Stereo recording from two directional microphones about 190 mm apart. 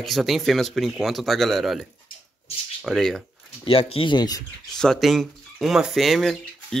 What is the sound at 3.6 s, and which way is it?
Speech, 30° left (ahead or behind).